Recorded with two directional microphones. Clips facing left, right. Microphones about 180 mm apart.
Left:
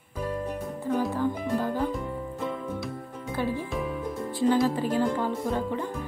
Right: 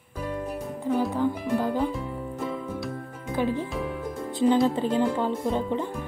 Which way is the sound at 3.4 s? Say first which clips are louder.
Right 2 dB; 15° right (ahead or behind).